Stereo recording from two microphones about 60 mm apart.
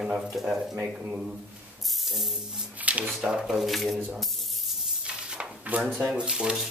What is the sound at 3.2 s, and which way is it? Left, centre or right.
Music, centre.